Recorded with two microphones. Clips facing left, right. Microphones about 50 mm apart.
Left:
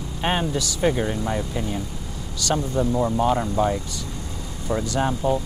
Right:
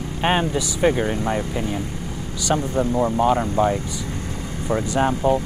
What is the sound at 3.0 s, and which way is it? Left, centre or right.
Speech, centre.